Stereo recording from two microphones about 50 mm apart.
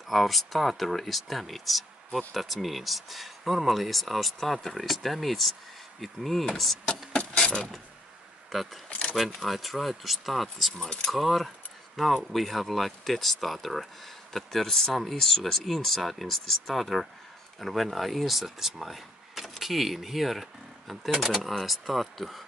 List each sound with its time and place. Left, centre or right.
0.1 s speech: centre
7.1 s mechanisms: centre
9.1 s speech: centre